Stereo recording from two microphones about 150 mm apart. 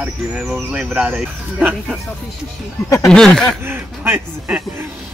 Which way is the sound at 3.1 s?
5° left (ahead or behind).